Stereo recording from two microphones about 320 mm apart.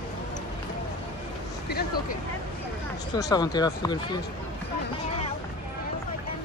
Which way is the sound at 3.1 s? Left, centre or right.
Centre.